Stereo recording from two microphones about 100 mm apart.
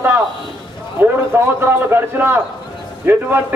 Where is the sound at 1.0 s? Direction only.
20° right (ahead or behind).